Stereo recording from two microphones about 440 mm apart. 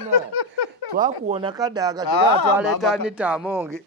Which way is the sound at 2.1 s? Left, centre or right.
Left.